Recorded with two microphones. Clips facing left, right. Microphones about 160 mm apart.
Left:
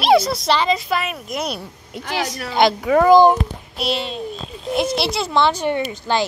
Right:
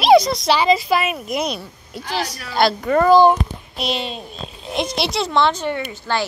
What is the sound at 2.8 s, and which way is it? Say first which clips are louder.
Speech: left 1 dB; 5° left (ahead or behind).